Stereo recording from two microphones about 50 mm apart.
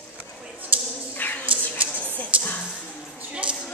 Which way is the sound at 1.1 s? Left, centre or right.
Left.